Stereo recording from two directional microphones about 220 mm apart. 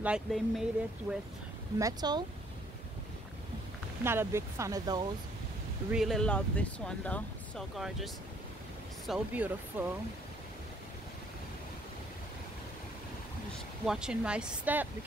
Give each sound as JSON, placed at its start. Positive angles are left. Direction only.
{"t": 0.0, "sound": "speech", "side_deg": -5}
{"t": 1.8, "sound": "speech", "side_deg": -15}
{"t": 4.0, "sound": "speech", "side_deg": -10}
{"t": 5.9, "sound": "speech", "side_deg": 0}
{"t": 13.8, "sound": "speech", "side_deg": -5}